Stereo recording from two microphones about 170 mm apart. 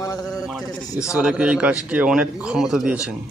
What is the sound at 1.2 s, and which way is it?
Speech, 5° right (ahead or behind).